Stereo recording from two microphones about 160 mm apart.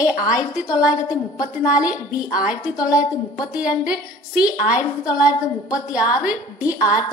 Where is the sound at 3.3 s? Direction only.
5° right (ahead or behind).